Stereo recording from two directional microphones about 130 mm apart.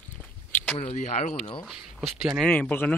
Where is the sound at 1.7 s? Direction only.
5° right (ahead or behind).